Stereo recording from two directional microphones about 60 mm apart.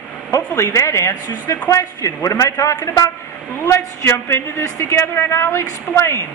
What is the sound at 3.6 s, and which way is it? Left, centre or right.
A woman's voice, left.